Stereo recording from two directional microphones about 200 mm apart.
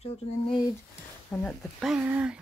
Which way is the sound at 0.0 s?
30° left (ahead or behind).